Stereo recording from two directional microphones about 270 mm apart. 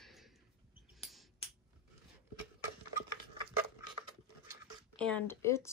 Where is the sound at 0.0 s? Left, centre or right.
Centre.